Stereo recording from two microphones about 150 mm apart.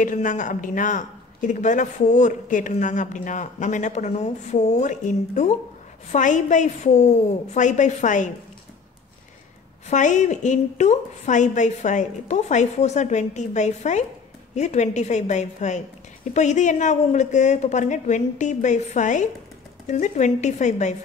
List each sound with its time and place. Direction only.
0.0 s speech: 60° left (ahead or behind)
9.8 s a woman's voice: 55° left (ahead or behind)